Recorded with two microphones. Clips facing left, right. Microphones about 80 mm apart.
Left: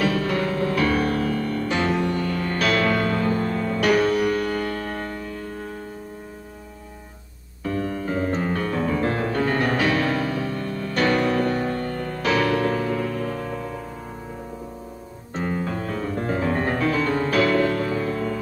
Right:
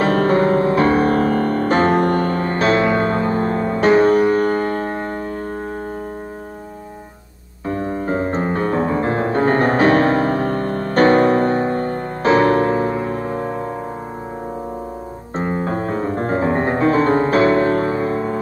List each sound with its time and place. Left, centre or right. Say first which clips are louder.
0.0 s music: right 8 dB; right
7.6 s music: right 4 dB; right
15.3 s music: right 5 dB; right